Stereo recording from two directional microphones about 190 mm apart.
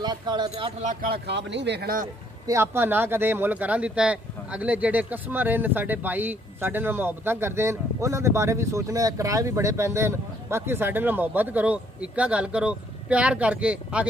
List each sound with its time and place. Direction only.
0.0 s speech: 20° right (ahead or behind)
0.8 s speech: 50° right (ahead or behind)
2.4 s speech: 15° right (ahead or behind)